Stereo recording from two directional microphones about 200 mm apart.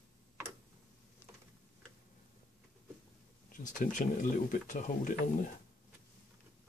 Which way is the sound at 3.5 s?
40° left (ahead or behind).